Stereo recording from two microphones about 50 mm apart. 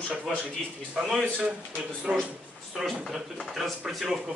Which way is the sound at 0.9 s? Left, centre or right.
Centre.